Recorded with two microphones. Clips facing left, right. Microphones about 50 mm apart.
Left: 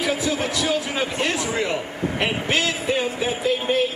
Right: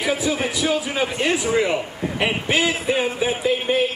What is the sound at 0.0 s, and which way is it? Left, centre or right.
A man's voice, centre.